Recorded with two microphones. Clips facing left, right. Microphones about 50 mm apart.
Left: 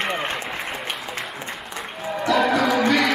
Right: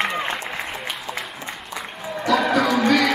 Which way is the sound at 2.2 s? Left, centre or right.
Centre.